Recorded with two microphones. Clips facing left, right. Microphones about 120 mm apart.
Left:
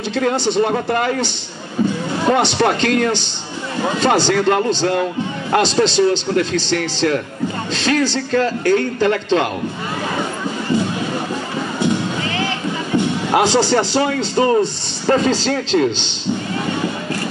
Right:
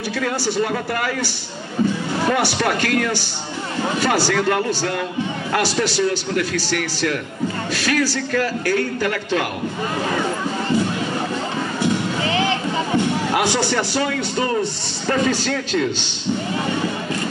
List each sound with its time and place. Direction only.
0.1 s a man's voice: 25° left (ahead or behind)
12.3 s music: 20° right (ahead or behind)
13.3 s a man's voice: 25° left (ahead or behind)